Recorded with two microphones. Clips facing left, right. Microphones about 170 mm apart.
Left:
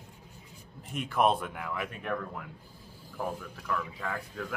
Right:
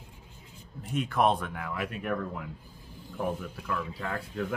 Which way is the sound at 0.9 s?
Centre (ahead or behind).